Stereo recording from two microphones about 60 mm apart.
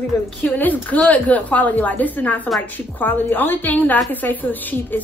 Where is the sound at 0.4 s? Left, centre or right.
Left.